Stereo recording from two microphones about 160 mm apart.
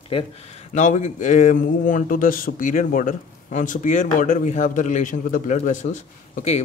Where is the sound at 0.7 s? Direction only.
50° left (ahead or behind).